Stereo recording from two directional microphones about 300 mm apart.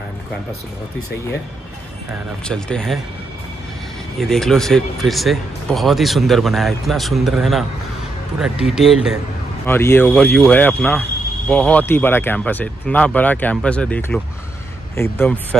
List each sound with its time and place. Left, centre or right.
2.4 s speech: centre
4.2 s speech: centre
8.6 s speech: centre